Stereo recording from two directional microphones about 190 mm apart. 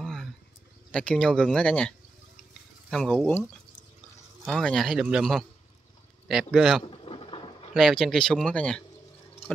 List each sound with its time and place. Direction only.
0.0 s a sound: centre (ahead or behind)
0.9 s speech: 5° left (ahead or behind)
4.5 s speech: centre (ahead or behind)
6.5 s speech: centre (ahead or behind)
6.8 s vehicle: 30° left (ahead or behind)
7.7 s speech: centre (ahead or behind)